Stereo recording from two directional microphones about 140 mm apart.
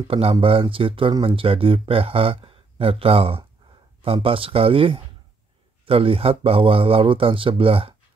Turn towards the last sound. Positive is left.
turn(degrees=-40)  # may be behind; listen again after turning